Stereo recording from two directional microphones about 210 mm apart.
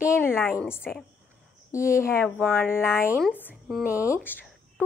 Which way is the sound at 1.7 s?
15° left (ahead or behind).